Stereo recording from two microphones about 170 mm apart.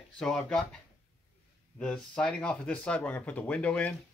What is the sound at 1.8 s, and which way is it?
Speech, 5° left (ahead or behind).